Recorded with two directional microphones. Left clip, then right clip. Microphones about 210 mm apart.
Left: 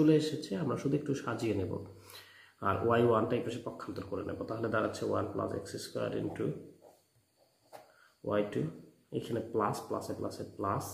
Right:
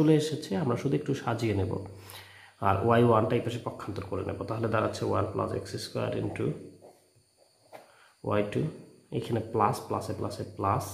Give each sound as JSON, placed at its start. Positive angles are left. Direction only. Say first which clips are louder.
{"t": 0.0, "sound": "speech", "louder": "right 3 dB", "side_deg": -40}
{"t": 8.3, "sound": "speech", "louder": "right 4 dB", "side_deg": -40}